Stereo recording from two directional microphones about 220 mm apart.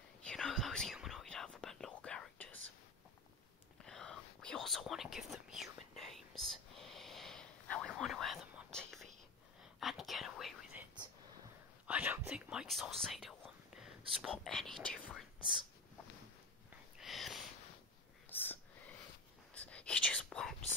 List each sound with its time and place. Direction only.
0.2 s whispering: 5° left (ahead or behind)
3.8 s whispering: centre (ahead or behind)
11.9 s whispering: 5° right (ahead or behind)
17.0 s a sound: centre (ahead or behind)
18.3 s whispering: 10° left (ahead or behind)